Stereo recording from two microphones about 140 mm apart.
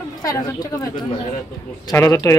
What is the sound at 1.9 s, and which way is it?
Speech, 25° left (ahead or behind).